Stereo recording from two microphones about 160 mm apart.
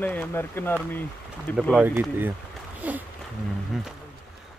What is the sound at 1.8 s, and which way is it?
Speech, 10° right (ahead or behind).